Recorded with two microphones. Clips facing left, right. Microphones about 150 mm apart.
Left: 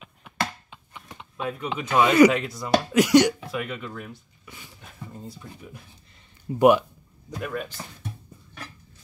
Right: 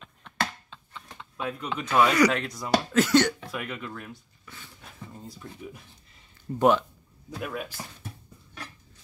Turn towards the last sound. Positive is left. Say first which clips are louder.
# left 3 dB
turn(degrees=-5)  # may be behind; listen again after turning